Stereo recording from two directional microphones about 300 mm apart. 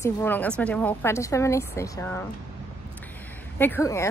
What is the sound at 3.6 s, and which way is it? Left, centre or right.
Speech, centre.